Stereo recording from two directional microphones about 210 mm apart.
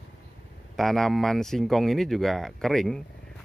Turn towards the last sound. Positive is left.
turn(degrees=0)  # may be behind; listen again after turning